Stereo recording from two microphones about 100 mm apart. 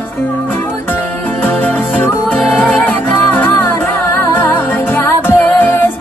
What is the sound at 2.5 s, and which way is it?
Music, 15° left (ahead or behind).